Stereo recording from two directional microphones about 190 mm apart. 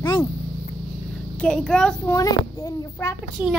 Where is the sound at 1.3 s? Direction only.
5° left (ahead or behind).